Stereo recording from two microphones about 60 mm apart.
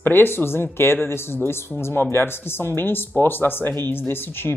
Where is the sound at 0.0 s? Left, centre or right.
Left.